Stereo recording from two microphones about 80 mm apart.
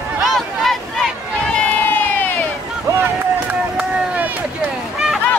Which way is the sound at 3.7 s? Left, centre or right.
Centre.